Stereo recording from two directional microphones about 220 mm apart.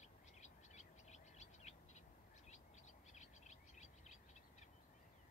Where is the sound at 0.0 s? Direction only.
30° left (ahead or behind).